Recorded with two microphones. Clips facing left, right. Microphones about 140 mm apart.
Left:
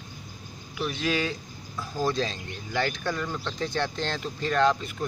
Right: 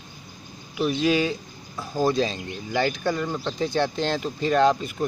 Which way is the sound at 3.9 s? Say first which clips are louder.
Right 6 dB; 10° right (ahead or behind).